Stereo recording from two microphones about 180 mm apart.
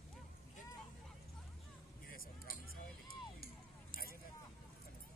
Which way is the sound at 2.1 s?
55° left (ahead or behind).